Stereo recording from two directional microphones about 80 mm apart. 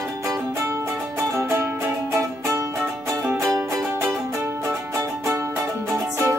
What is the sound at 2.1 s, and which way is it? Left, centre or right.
Music, right.